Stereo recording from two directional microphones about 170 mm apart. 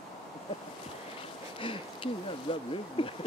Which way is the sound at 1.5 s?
30° left (ahead or behind).